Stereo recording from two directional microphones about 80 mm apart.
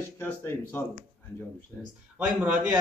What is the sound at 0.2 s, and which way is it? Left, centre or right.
Speech, left.